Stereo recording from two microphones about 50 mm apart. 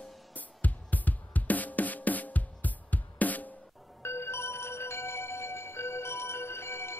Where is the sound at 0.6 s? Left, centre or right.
Left.